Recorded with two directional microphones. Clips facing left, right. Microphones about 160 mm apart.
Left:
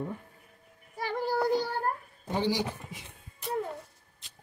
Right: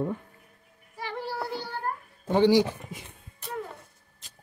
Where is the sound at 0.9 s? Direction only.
40° left (ahead or behind).